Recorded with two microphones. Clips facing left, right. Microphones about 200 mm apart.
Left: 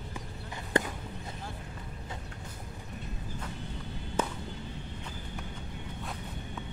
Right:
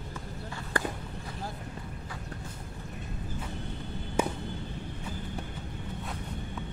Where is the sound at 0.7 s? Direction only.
20° left (ahead or behind).